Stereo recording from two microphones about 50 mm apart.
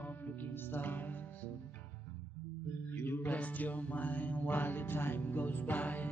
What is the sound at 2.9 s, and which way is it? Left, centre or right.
Mantra, left.